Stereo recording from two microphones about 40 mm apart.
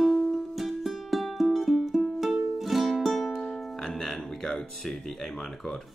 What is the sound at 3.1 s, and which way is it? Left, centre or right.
Music, centre.